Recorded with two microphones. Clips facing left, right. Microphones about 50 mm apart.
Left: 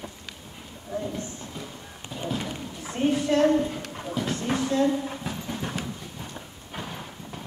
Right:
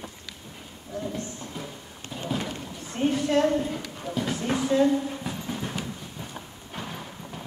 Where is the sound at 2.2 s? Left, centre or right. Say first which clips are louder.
Even; centre.